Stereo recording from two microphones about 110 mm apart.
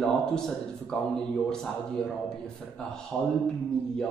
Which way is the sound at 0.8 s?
5° left (ahead or behind).